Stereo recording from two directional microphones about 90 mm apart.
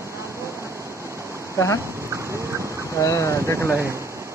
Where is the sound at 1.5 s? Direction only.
35° left (ahead or behind).